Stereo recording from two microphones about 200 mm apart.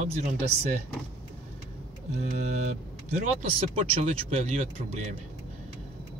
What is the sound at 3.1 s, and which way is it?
Speech, 35° right (ahead or behind).